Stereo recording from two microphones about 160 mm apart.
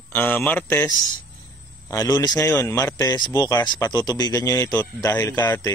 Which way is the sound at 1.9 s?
20° left (ahead or behind).